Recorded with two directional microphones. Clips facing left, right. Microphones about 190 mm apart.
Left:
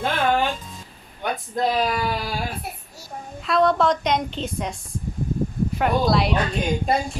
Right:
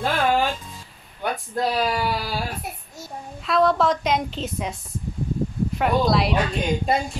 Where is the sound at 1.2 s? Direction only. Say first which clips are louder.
Left 1 dB; 5° right (ahead or behind).